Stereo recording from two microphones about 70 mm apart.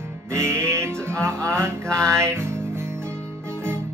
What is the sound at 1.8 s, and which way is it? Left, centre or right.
Mantra, centre.